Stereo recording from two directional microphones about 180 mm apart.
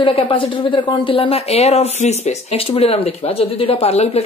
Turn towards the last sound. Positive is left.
turn(degrees=35)  # may be behind; listen again after turning